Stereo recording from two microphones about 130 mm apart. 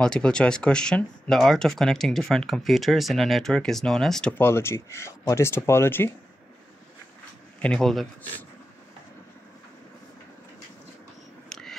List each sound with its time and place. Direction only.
0.0 s speech: 5° left (ahead or behind)
4.4 s speech: 20° left (ahead or behind)
7.6 s speech: 5° left (ahead or behind)
11.4 s a sound: 5° left (ahead or behind)